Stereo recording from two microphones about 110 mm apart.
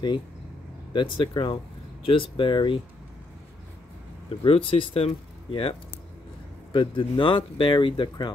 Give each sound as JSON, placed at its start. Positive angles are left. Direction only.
{"t": 0.9, "sound": "speech", "side_deg": 50}
{"t": 4.4, "sound": "speech", "side_deg": 55}